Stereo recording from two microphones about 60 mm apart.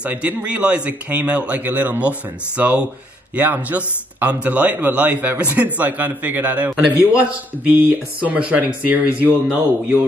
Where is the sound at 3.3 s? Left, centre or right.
Right.